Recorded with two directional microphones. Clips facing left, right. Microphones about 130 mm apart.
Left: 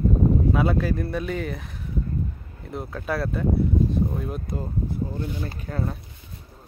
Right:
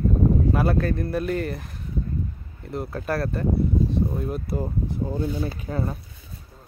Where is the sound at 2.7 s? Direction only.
Centre (ahead or behind).